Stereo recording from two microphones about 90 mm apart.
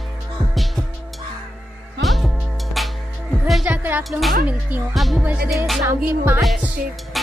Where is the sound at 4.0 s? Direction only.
Centre (ahead or behind).